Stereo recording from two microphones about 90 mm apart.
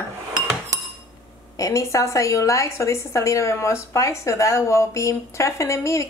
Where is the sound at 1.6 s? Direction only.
35° left (ahead or behind).